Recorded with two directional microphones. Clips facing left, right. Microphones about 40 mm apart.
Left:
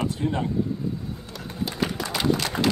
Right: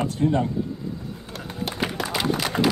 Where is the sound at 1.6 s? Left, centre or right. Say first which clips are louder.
Right 1 dB; right.